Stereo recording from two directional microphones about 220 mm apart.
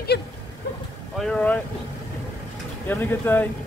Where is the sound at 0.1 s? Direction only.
50° left (ahead or behind).